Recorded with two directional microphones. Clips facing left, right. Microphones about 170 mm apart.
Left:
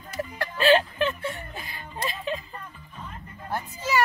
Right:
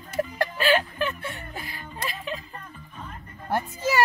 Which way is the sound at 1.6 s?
25° left (ahead or behind).